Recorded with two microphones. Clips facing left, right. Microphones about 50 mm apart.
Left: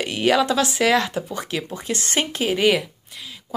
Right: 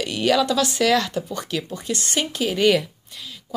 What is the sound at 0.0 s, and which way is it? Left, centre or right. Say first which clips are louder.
Speech: left 1 dB; left.